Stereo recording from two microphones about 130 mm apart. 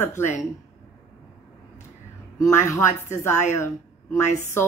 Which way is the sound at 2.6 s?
20° left (ahead or behind).